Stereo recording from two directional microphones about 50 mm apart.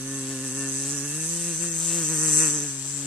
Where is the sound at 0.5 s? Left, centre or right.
Centre.